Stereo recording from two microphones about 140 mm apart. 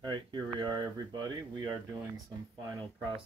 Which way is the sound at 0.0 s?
30° right (ahead or behind).